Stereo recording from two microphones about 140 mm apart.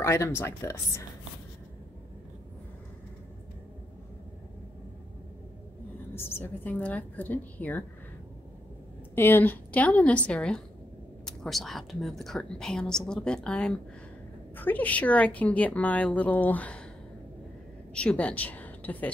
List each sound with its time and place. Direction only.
0.0 s speech: 20° left (ahead or behind)
6.1 s a woman's voice: 15° left (ahead or behind)
9.1 s a woman's voice: 15° left (ahead or behind)
17.9 s a woman's voice: 10° left (ahead or behind)